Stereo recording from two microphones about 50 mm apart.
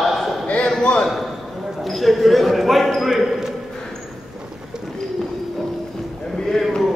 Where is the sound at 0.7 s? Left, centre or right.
Centre.